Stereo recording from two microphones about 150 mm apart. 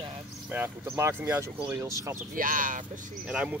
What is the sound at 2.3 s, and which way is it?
Speech, 65° right (ahead or behind).